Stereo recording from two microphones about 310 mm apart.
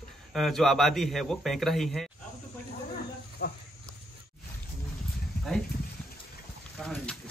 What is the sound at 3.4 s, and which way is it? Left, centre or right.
Speech, left.